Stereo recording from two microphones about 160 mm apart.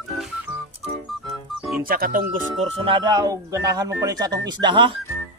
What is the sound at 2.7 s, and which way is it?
Speech, 35° right (ahead or behind).